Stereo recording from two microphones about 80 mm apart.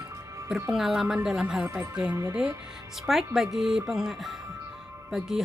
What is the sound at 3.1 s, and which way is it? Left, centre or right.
Speech, centre.